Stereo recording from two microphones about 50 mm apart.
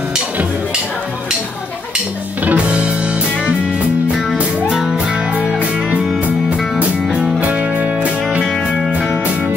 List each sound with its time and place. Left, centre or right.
2.4 s music: right
4.4 s music: right